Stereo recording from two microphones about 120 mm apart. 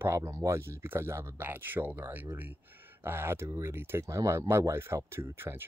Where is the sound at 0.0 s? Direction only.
20° right (ahead or behind).